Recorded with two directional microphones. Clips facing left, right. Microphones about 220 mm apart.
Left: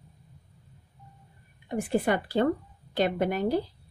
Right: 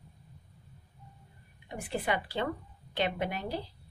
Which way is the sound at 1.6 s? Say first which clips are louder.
Left 8 dB; 45° left (ahead or behind).